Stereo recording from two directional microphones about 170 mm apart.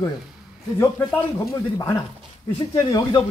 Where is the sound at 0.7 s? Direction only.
15° left (ahead or behind).